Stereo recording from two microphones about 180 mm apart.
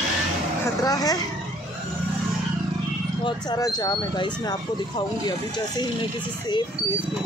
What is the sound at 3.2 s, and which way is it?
Speech, 20° left (ahead or behind).